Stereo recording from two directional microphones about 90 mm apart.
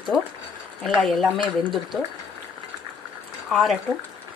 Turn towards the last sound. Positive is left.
turn(degrees=0)  # may be behind; listen again after turning